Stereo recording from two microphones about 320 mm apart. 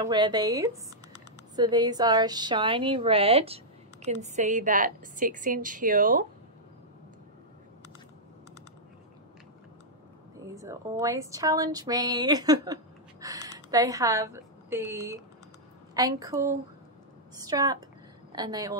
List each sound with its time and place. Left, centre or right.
0.0 s a woman's voice: centre
10.4 s a woman's voice: centre